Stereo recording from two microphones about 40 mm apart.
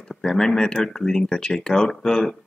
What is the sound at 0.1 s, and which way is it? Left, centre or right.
Speech, centre.